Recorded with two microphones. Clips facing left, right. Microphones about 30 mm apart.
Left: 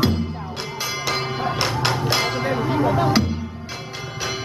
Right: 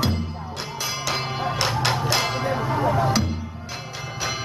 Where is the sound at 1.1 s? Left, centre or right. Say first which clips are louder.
Left 2 dB; centre.